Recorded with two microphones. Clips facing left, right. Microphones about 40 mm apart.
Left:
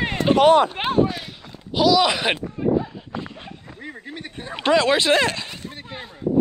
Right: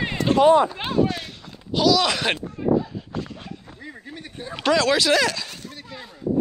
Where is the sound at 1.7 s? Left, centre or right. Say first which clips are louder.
Left 2 dB; centre.